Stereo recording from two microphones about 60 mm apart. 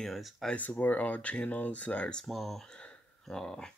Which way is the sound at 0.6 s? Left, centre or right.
Left.